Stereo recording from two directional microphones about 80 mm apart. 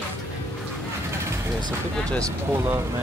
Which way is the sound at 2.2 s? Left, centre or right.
Right.